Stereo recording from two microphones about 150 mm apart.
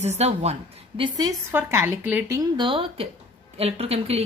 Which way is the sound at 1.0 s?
25° right (ahead or behind).